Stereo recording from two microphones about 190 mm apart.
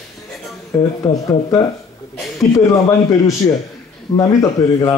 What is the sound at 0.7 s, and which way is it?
Speech, 10° left (ahead or behind).